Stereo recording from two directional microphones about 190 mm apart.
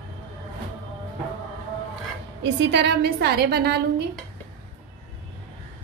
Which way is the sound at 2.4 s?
65° right (ahead or behind).